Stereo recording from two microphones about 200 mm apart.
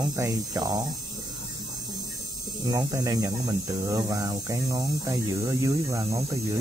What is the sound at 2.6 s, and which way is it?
Speech, 20° right (ahead or behind).